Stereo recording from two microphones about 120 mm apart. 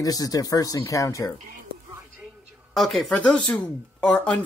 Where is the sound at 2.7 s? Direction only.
Centre (ahead or behind).